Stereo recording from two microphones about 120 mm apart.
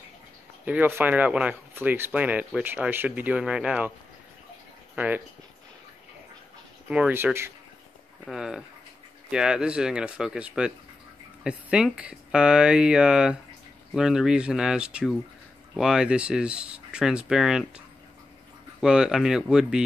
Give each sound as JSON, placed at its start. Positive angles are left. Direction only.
{"t": 0.7, "sound": "speech", "side_deg": -15}
{"t": 4.9, "sound": "speech", "side_deg": -15}
{"t": 6.9, "sound": "speech", "side_deg": -15}
{"t": 8.3, "sound": "speech", "side_deg": -5}